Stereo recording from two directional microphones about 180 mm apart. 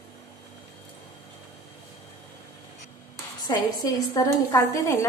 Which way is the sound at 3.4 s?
20° left (ahead or behind).